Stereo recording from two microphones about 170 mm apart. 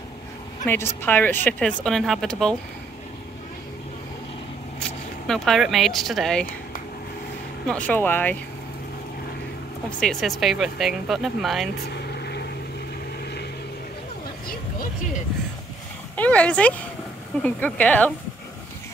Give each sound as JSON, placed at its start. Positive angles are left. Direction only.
{"t": 0.7, "sound": "speech", "side_deg": 10}
{"t": 5.2, "sound": "speech", "side_deg": 0}
{"t": 7.6, "sound": "speech", "side_deg": 5}
{"t": 9.8, "sound": "speech", "side_deg": 5}
{"t": 11.9, "sound": "vehicle", "side_deg": 75}
{"t": 16.2, "sound": "speech", "side_deg": 10}